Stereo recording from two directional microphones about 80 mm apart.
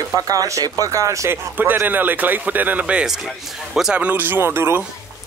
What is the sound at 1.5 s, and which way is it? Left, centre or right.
Speech, right.